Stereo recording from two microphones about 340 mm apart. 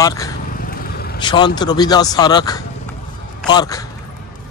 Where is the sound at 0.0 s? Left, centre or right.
Centre.